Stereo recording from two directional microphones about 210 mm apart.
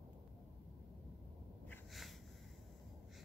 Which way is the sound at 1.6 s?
Centre (ahead or behind).